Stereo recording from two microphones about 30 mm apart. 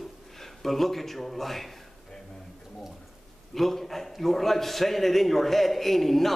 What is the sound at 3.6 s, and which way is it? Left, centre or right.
A man's voice, centre.